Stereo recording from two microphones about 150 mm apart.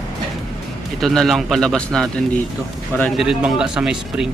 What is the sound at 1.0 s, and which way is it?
Speech, centre (ahead or behind).